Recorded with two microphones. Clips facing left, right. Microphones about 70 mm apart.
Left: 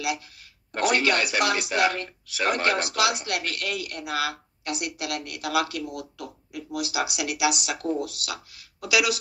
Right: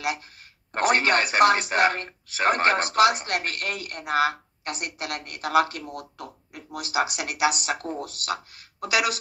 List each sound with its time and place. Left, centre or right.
0.7 s speech: right